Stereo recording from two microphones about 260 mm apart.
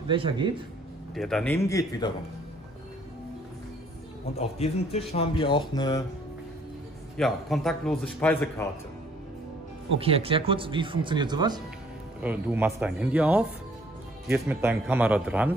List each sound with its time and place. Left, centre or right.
0.1 s speech: centre
1.1 s speech: centre
4.4 s a man's voice: left
7.2 s a man's voice: centre
9.9 s speech: right
12.2 s a man's voice: centre